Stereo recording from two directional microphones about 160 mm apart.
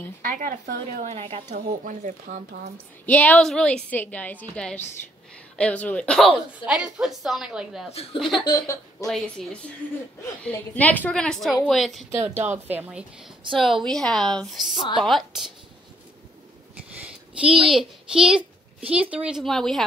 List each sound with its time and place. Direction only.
0.3 s speech: 55° right (ahead or behind)
1.1 s speech: 35° right (ahead or behind)
1.9 s speech: 50° right (ahead or behind)
3.1 s a woman's voice: 10° left (ahead or behind)
6.6 s a woman's voice: 5° right (ahead or behind)
7.9 s speech: 40° left (ahead or behind)
8.2 s a woman's voice: centre (ahead or behind)
8.5 s speech: 25° left (ahead or behind)
9.0 s a woman's voice: 5° left (ahead or behind)
12.2 s a woman's voice: 15° right (ahead or behind)
17.6 s a woman's voice: 5° right (ahead or behind)
18.4 s a sound: 35° right (ahead or behind)
18.9 s a woman's voice: 5° right (ahead or behind)